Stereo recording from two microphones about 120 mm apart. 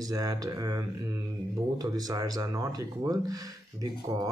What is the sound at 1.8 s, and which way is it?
Speech, 30° right (ahead or behind).